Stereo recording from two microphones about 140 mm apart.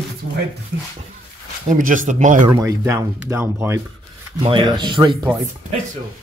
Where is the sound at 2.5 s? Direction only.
20° right (ahead or behind).